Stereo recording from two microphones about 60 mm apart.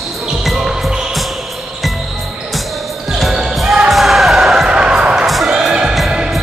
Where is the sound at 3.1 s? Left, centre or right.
Centre.